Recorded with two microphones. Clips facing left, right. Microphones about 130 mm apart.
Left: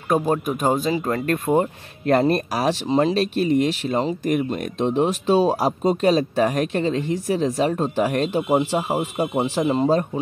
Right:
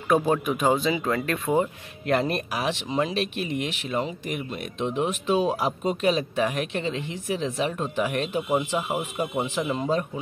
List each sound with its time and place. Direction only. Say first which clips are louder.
0.3 s speech: left 2 dB; 40° left (ahead or behind)